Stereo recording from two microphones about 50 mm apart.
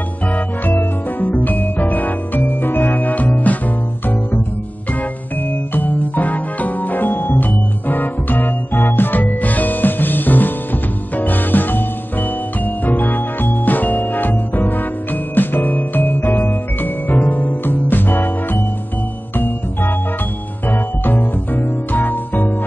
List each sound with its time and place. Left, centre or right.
0.7 s music: left
5.8 s music: left